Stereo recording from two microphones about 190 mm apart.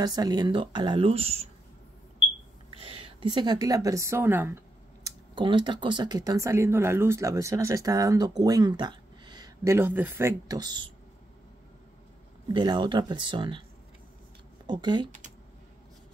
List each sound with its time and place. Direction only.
0.0 s speech: 20° right (ahead or behind)
2.7 s speech: 30° right (ahead or behind); by 4.6 s 10° right (ahead or behind)
5.0 s speech: 25° right (ahead or behind)
12.5 s speech: 25° right (ahead or behind)
14.7 s speech: 25° right (ahead or behind)